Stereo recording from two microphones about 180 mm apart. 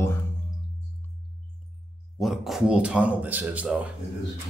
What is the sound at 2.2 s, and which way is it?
Speech, centre (ahead or behind).